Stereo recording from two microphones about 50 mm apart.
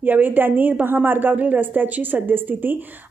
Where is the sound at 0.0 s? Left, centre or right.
Right.